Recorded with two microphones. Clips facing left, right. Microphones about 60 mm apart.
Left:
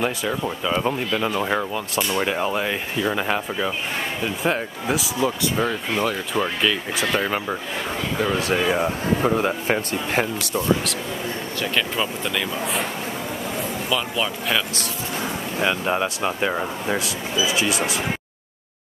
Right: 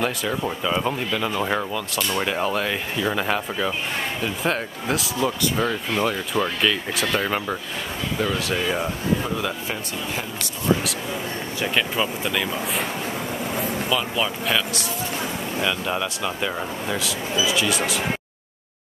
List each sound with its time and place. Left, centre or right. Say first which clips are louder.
0.0 s speech: left 1 dB; centre
0.8 s speech: left 2 dB; centre
1.7 s speech: left 1 dB; centre
2.1 s speech: even; centre
8.4 s speech: left 3 dB; left
8.6 s speech: left 3 dB; centre
9.2 s speech: left 6 dB; left
9.7 s speech: left 6 dB; left
11.6 s speech: right 1 dB; centre
13.8 s speech: left 1 dB; centre
15.6 s speech: left 4 dB; left